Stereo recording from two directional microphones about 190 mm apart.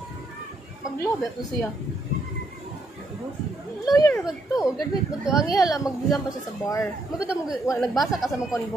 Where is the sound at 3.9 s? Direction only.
15° left (ahead or behind).